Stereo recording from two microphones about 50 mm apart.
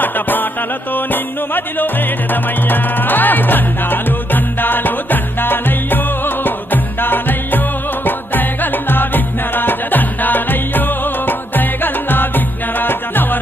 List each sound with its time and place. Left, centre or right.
0.0 s music: left